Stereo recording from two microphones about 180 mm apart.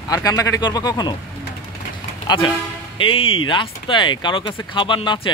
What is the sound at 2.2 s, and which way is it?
Speech, 25° left (ahead or behind).